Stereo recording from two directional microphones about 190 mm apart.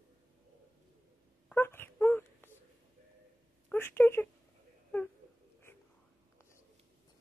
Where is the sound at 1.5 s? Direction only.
10° left (ahead or behind).